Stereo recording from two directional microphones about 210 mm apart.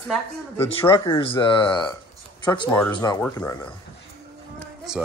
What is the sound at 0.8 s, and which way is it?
A man's voice, 20° left (ahead or behind).